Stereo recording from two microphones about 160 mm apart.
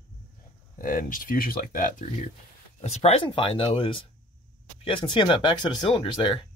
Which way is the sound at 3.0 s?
35° left (ahead or behind).